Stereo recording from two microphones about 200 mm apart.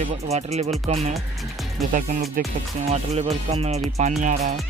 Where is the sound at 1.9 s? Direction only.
40° right (ahead or behind).